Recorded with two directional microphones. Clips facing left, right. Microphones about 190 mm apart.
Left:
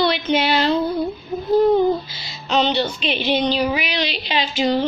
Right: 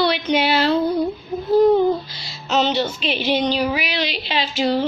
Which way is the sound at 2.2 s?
5° right (ahead or behind).